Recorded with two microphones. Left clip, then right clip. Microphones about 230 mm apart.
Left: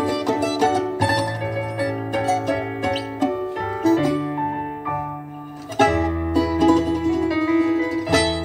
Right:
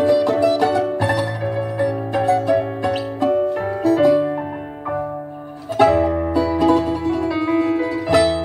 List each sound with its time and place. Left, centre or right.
0.0 s music: left
5.8 s music: left